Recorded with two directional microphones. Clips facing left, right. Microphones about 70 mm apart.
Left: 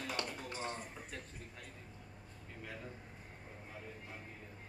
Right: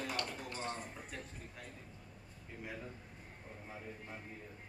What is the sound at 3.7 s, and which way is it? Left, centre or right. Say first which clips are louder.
Speech: right 2 dB; centre.